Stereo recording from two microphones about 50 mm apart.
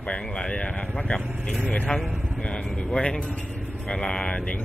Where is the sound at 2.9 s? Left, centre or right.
Centre.